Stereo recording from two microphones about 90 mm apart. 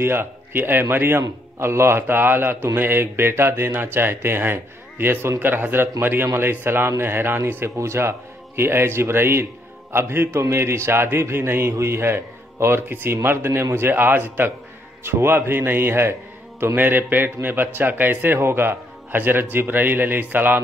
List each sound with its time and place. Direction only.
0.0 s a man's voice: 25° right (ahead or behind)